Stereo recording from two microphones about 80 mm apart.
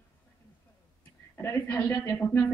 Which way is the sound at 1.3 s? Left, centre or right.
Left.